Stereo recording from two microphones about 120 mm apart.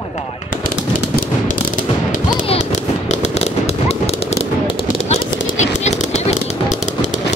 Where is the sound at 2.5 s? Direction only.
75° left (ahead or behind); by 5.1 s 50° left (ahead or behind).